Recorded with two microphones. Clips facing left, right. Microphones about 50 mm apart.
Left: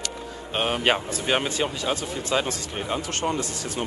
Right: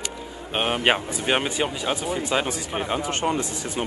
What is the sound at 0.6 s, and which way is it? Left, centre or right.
Speech, centre.